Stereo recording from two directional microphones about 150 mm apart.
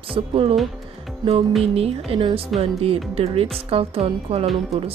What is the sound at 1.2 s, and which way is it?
Music, 25° right (ahead or behind).